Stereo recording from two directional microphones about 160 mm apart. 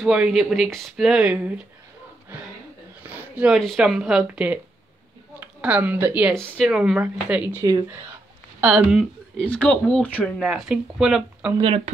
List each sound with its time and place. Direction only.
0.0 s speech: 5° right (ahead or behind)
3.1 s a sound: 10° right (ahead or behind)
3.5 s speech: centre (ahead or behind)
10.5 s speech: 5° right (ahead or behind)
11.6 s speech: 40° right (ahead or behind)